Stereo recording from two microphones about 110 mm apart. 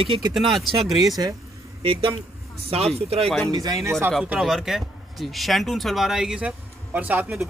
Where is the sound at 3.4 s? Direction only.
30° right (ahead or behind).